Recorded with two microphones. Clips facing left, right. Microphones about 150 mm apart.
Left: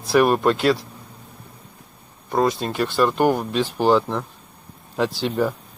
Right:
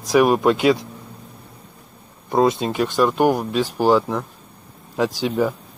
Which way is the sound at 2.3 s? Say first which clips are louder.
Right 3 dB; 20° right (ahead or behind).